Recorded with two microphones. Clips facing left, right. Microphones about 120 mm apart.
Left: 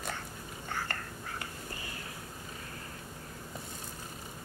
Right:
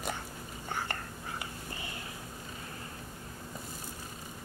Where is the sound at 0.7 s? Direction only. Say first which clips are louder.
Right 1 dB; 15° right (ahead or behind).